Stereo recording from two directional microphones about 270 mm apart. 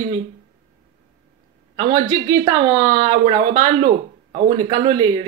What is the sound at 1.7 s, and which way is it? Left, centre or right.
Speech, centre.